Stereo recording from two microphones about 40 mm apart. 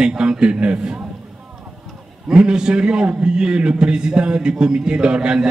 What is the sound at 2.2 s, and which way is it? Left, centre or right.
Mantra, centre.